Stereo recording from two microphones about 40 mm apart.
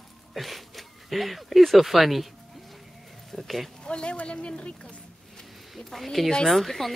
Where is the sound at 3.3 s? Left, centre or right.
Centre.